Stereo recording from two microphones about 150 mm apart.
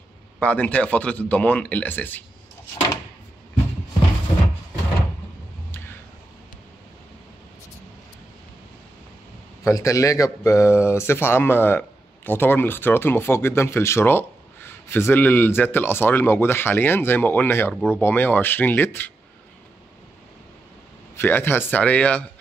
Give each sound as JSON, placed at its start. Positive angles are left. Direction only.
{"t": 0.4, "sound": "speech", "side_deg": 10}
{"t": 9.6, "sound": "speech", "side_deg": 20}
{"t": 21.2, "sound": "speech", "side_deg": 15}